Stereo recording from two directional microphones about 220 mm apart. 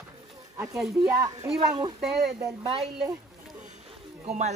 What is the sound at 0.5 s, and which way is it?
Speech, centre (ahead or behind).